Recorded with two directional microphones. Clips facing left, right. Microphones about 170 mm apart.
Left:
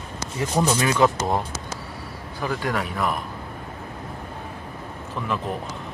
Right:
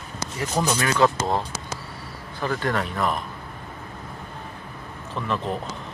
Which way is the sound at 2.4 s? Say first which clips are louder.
Right 1 dB; 10° left (ahead or behind).